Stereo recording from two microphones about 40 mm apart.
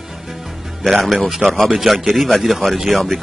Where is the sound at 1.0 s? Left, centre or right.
Centre.